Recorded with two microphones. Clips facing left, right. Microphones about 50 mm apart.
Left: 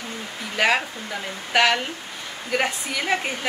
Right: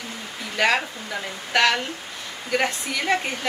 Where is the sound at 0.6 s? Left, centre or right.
Centre.